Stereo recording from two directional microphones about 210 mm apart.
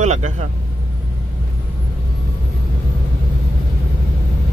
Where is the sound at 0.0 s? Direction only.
35° right (ahead or behind).